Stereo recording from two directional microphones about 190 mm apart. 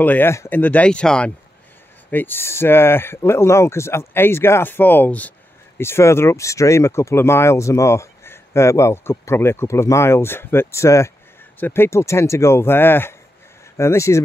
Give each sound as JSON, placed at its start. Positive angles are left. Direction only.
{"t": 0.0, "sound": "speech", "side_deg": 10}